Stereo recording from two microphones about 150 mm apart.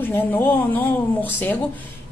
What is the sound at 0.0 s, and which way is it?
Speech, 15° left (ahead or behind).